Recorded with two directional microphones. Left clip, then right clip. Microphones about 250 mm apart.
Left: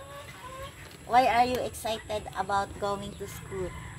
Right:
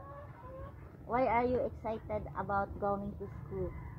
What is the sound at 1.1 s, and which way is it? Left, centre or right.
A woman's voice, left.